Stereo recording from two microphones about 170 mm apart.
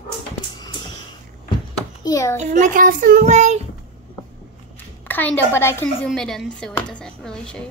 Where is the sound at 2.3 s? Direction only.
45° right (ahead or behind).